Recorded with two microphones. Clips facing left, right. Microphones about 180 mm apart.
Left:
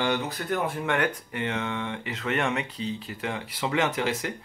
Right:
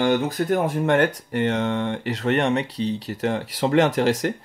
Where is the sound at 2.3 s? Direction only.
35° right (ahead or behind).